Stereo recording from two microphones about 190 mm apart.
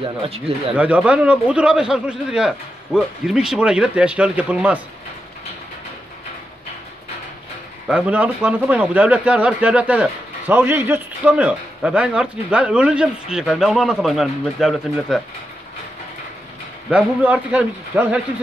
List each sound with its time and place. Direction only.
0.0 s speech: 30° right (ahead or behind)
0.7 s a man's voice: 5° right (ahead or behind)
7.9 s speech: 10° right (ahead or behind)
16.9 s a man's voice: 5° right (ahead or behind)